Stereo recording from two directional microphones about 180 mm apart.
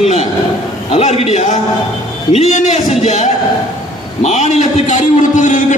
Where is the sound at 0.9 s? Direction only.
35° left (ahead or behind).